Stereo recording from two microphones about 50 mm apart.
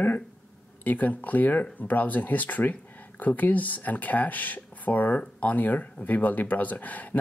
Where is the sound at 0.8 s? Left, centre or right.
Left.